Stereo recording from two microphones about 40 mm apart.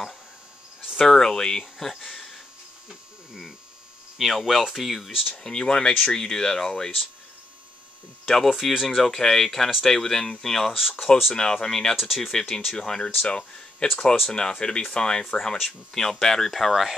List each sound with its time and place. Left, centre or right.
0.9 s speech: centre
2.0 s a sound: centre
4.2 s speech: centre
5.3 s speech: centre
8.3 s speech: centre
8.5 s speech: centre
9.0 s speech: centre
10.7 s speech: centre
11.3 s speech: centre
13.2 s speech: left
13.7 s speech: centre